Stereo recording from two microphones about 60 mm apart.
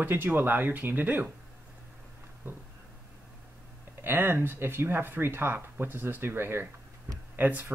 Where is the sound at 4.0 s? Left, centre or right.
Right.